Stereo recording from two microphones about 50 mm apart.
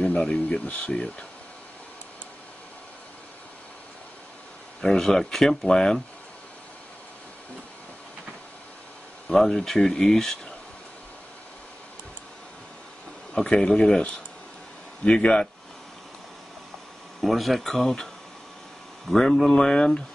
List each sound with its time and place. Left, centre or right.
0.0 s speech: centre
4.8 s speech: centre
9.3 s speech: centre
13.3 s speech: centre
17.2 s speech: centre